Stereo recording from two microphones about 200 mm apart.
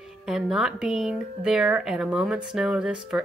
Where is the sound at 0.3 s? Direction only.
5° right (ahead or behind).